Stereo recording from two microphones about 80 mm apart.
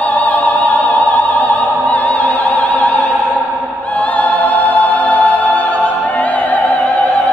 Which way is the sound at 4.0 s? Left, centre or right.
Centre.